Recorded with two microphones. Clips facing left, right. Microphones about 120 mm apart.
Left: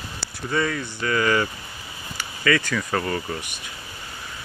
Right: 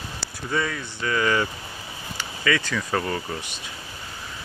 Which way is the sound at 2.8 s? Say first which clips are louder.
Left 1 dB; 10° right (ahead or behind).